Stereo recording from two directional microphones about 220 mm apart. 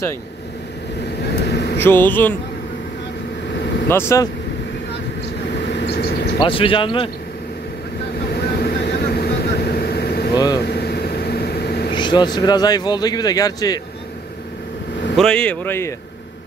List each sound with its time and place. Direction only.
1.3 s vehicle: 50° left (ahead or behind)
1.8 s speech: 10° left (ahead or behind)
3.9 s speech: 10° left (ahead or behind)
5.5 s vehicle: 50° left (ahead or behind)
6.4 s speech: 25° left (ahead or behind)
8.3 s vehicle: 45° left (ahead or behind)
11.9 s vehicle: 20° left (ahead or behind)
12.4 s speech: 20° left (ahead or behind)
15.1 s speech: 5° left (ahead or behind)